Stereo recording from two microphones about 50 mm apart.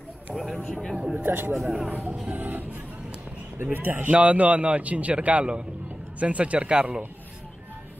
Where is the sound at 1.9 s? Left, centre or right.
Right.